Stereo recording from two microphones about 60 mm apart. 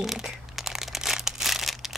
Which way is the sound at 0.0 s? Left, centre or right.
Centre.